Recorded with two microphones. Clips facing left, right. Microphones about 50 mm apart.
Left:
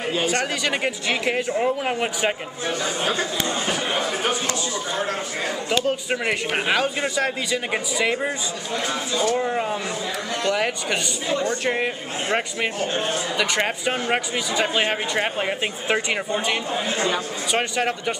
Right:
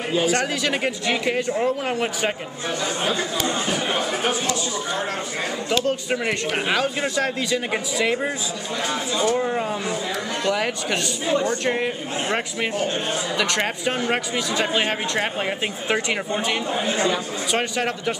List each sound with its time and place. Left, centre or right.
0.1 s speech: centre
3.6 s speech: centre
5.7 s speech: centre
9.1 s speech: right
9.4 s speech: centre
16.8 s speech: centre
17.5 s speech: centre